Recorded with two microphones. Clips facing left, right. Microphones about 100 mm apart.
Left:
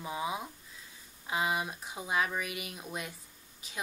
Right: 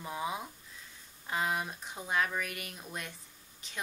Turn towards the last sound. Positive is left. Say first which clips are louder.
# left 1 dB
turn(degrees=5)  # may be behind; listen again after turning